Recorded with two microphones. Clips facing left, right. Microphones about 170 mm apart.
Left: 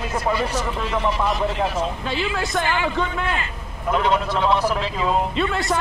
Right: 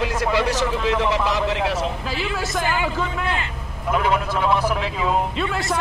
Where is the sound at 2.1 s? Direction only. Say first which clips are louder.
Left 2 dB; centre (ahead or behind).